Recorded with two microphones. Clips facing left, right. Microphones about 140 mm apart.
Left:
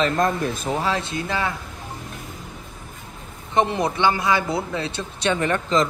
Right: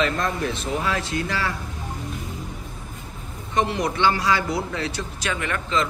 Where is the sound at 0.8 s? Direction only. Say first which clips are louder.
Left 1 dB; 25° left (ahead or behind).